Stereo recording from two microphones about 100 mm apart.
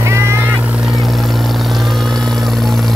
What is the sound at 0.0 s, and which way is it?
Vehicle, 30° right (ahead or behind).